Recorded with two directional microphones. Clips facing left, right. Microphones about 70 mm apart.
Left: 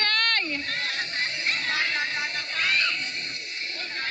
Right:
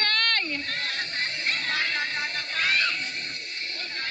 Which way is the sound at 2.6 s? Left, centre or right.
Centre.